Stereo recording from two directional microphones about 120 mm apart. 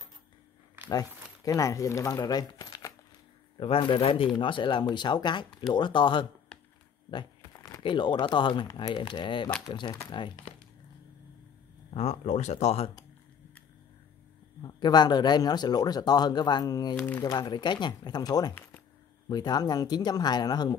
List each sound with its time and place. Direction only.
0.8 s speech: 30° left (ahead or behind)
3.5 s speech: 50° left (ahead or behind)
7.4 s a sound: 25° left (ahead or behind)
7.8 s speech: 40° left (ahead or behind)
11.9 s speech: 60° left (ahead or behind)
14.6 s speech: 35° left (ahead or behind)